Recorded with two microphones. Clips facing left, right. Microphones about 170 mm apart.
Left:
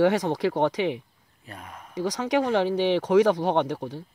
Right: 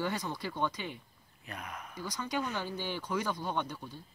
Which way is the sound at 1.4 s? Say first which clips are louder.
Left 1 dB; 30° left (ahead or behind).